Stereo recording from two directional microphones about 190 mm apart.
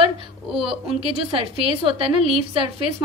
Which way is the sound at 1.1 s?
30° right (ahead or behind).